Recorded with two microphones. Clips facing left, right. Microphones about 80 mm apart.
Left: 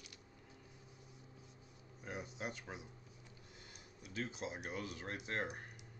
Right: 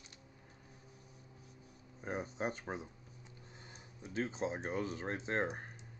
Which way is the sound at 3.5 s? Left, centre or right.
Right.